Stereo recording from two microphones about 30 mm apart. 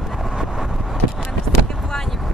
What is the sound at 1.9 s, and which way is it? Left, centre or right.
Vehicle, centre.